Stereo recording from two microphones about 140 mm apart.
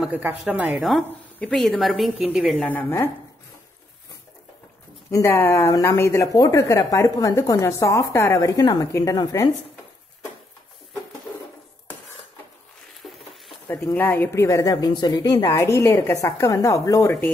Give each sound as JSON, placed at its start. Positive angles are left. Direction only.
{"t": 0.1, "sound": "a woman's voice", "side_deg": -10}
{"t": 1.4, "sound": "a woman's voice", "side_deg": 0}
{"t": 5.1, "sound": "speech", "side_deg": 20}
{"t": 13.7, "sound": "speech", "side_deg": 15}